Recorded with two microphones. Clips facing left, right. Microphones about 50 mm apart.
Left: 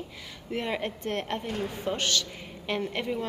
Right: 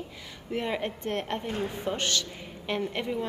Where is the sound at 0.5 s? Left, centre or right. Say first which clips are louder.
Even; centre.